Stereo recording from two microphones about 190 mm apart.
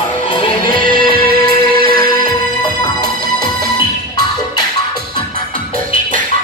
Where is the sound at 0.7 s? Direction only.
50° right (ahead or behind).